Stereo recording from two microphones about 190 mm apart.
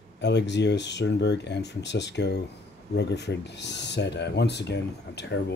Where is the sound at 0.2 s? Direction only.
65° left (ahead or behind).